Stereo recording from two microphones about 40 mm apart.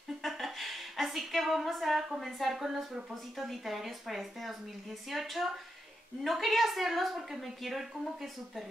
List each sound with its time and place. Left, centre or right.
0.2 s a woman's voice: centre